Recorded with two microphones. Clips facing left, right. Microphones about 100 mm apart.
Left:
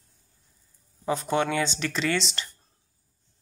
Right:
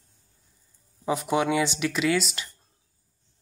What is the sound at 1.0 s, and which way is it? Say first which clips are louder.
Speech: right 1 dB; 10° right (ahead or behind).